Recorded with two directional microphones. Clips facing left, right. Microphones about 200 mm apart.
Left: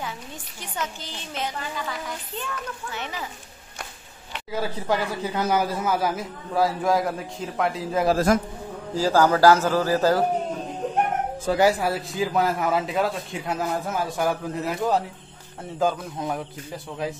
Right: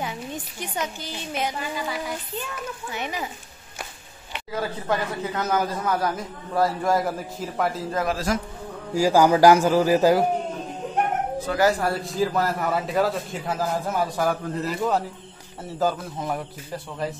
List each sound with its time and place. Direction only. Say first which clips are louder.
0.0 s a woman's voice: right 4 dB; 15° right (ahead or behind)
4.3 s a man's voice: even; 5° left (ahead or behind)
8.3 s a man's voice: left 5 dB; 50° left (ahead or behind)
8.9 s a woman's voice: right 2 dB; 10° right (ahead or behind)
11.4 s speech: left 2 dB; 20° left (ahead or behind)
11.8 s a man's voice: right 1 dB; centre (ahead or behind)